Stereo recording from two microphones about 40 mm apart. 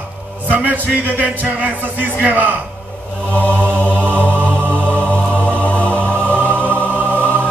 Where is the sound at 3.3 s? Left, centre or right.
Left.